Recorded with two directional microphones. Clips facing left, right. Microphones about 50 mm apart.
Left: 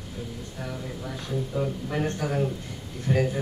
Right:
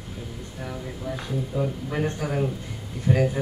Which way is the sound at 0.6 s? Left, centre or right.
Centre.